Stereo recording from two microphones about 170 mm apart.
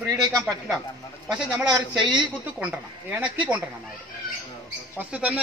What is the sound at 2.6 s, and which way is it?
Speech, 10° right (ahead or behind).